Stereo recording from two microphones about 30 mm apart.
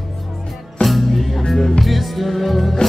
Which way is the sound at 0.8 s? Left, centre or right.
Centre.